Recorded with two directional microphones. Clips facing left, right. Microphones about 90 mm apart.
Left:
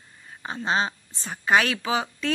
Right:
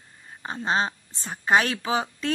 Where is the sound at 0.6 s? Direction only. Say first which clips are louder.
Even; 35° right (ahead or behind).